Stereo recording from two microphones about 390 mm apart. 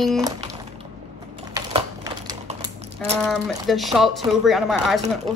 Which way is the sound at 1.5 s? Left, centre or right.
Centre.